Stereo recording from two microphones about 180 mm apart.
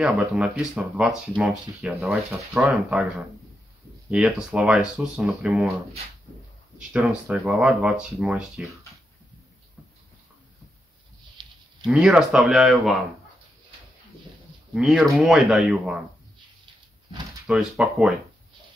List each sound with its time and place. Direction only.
0.0 s speech: 5° right (ahead or behind)
4.1 s speech: 5° right (ahead or behind)
6.9 s speech: 5° right (ahead or behind)
11.4 s livestock: 25° right (ahead or behind)
11.9 s speech: 5° right (ahead or behind)
14.7 s speech: centre (ahead or behind)
17.5 s speech: 5° right (ahead or behind)